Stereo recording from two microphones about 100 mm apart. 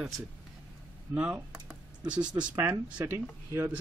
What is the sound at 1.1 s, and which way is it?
Speech, 15° right (ahead or behind).